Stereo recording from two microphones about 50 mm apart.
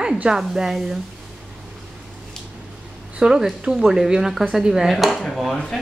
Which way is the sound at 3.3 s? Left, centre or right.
Centre.